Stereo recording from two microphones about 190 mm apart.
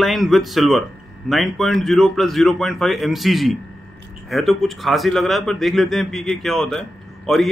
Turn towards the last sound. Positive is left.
turn(degrees=0)  # may be behind; listen again after turning